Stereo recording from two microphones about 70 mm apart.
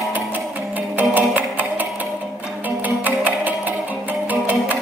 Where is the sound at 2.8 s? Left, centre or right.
Right.